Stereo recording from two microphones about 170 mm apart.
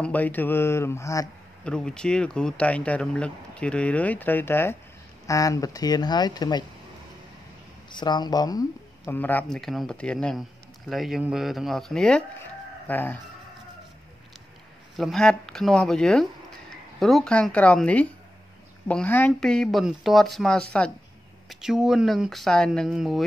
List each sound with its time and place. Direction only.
0.0 s speech: 10° left (ahead or behind)
1.6 s speech: 5° left (ahead or behind); by 6.6 s 25° left (ahead or behind)
7.9 s speech: 25° left (ahead or behind); by 13.2 s 10° left (ahead or behind)
15.0 s speech: centre (ahead or behind)